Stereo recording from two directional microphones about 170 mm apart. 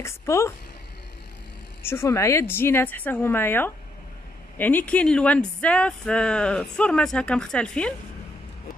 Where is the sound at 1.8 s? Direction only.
15° left (ahead or behind).